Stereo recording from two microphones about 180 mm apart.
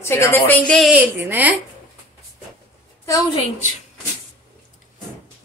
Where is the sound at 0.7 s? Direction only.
5° right (ahead or behind).